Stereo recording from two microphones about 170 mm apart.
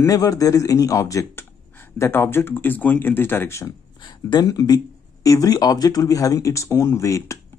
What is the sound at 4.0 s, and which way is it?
Speech, 25° left (ahead or behind).